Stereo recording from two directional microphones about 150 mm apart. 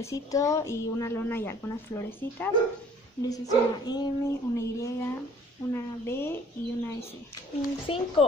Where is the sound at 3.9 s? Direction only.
25° left (ahead or behind).